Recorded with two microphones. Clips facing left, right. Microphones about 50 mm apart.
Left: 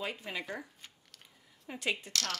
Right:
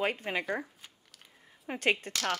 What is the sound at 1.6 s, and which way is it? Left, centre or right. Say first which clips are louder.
Speech: right 6 dB; right.